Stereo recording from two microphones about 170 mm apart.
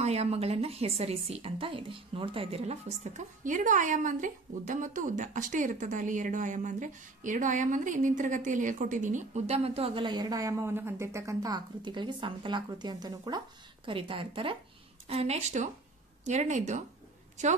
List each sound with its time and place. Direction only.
0.0 s a woman's voice: 40° right (ahead or behind)